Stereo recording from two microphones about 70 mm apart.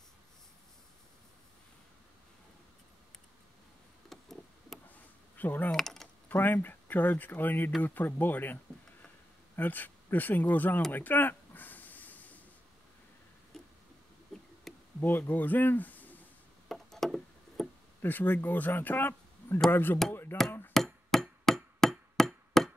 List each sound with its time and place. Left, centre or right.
4.1 s a sound: centre
5.4 s speech: left
5.7 s keys jangling: centre
6.2 s speech: left
9.6 s speech: left
10.9 s a sound: left
14.3 s insect: centre
15.0 s speech: left
16.6 s music: centre
18.0 s speech: left
20.7 s hammer: centre